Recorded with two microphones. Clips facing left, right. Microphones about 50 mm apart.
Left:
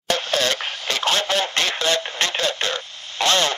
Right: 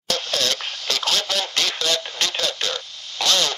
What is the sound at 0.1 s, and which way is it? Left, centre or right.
Radio, left.